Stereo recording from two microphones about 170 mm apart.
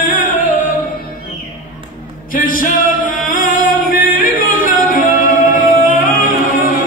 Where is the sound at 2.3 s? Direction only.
55° left (ahead or behind).